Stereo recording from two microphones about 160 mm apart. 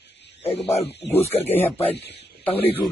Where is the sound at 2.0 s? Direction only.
90° left.